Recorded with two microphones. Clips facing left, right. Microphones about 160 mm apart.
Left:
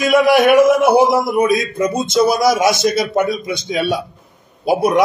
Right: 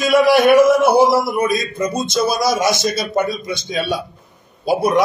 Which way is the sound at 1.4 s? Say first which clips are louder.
Left 3 dB; centre (ahead or behind).